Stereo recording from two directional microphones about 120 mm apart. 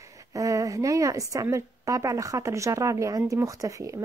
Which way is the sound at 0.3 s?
30° right (ahead or behind).